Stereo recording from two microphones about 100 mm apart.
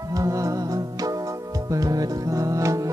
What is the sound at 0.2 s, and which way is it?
Music, 35° right (ahead or behind).